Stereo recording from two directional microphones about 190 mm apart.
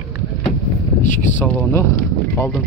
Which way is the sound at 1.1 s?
10° left (ahead or behind).